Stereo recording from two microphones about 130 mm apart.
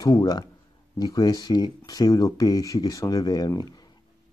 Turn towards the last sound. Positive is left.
turn(degrees=30)  # may be behind; listen again after turning